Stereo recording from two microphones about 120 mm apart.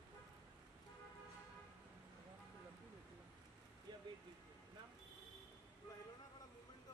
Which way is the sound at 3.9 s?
40° right (ahead or behind).